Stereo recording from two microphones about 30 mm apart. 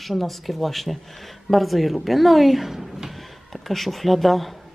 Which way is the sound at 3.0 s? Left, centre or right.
Centre.